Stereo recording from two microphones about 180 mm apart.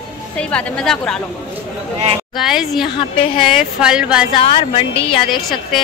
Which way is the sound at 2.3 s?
Centre (ahead or behind).